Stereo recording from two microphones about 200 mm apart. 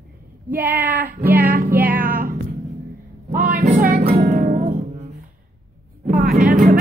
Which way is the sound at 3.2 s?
45° right (ahead or behind).